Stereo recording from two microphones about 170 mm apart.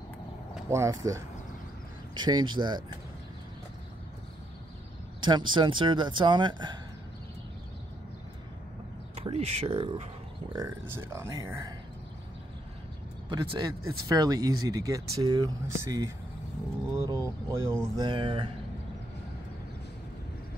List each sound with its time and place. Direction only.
0.7 s speech: 15° right (ahead or behind)
5.2 s speech: 25° right (ahead or behind)
9.1 s speech: 35° right (ahead or behind)
10.5 s speech: 15° right (ahead or behind)
13.3 s speech: 25° right (ahead or behind)
16.9 s a sound: 20° right (ahead or behind)
17.9 s speech: 30° right (ahead or behind)